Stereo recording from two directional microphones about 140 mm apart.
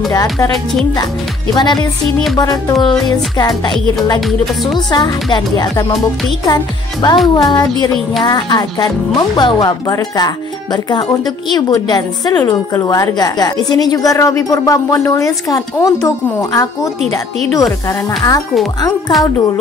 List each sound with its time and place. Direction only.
0.1 s speech: 25° left (ahead or behind)
1.5 s music: 30° left (ahead or behind)
2.3 s speech: 30° left (ahead or behind)
4.7 s speech: 30° left (ahead or behind)